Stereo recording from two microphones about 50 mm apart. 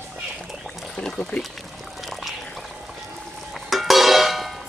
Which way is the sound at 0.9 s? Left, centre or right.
Left.